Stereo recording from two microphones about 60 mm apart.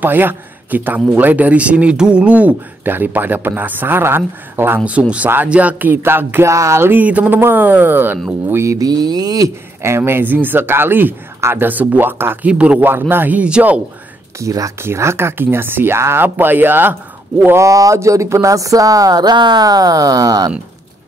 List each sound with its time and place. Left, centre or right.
0.0 s a man's voice: right
5.5 s speech: right
6.4 s a sound: right
6.9 s speech: right
8.6 s mantra: right
9.8 s speech: right
12.4 s speech: right
13.1 s speech: right
14.4 s speech: right
14.8 s speech: right
17.6 s speech: right